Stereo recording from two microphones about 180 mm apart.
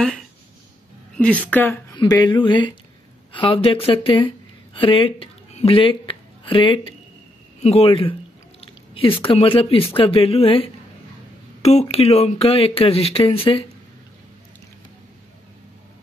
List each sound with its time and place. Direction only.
1.1 s a sound: 5° left (ahead or behind)
1.5 s speech: 10° left (ahead or behind)
2.0 s speech: 25° left (ahead or behind)